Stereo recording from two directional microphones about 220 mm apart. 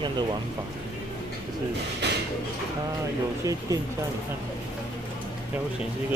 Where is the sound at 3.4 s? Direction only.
15° right (ahead or behind).